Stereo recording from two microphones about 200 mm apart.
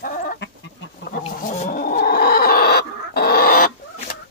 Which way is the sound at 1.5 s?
45° left (ahead or behind).